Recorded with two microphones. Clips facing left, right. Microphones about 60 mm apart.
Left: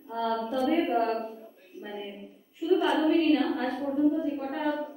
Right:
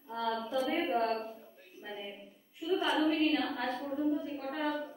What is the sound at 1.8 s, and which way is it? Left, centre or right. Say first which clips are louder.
Speech: left 5 dB; centre.